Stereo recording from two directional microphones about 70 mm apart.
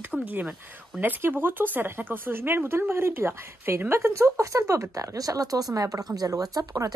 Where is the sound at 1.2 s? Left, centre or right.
Right.